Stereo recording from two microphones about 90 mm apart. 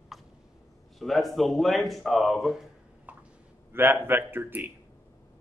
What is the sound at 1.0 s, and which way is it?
Speech, centre (ahead or behind).